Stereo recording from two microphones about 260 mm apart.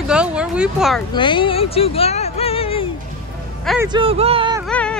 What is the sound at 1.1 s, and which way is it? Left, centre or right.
Speech, centre.